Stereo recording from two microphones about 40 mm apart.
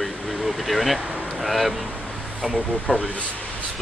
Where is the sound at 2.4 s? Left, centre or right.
Centre.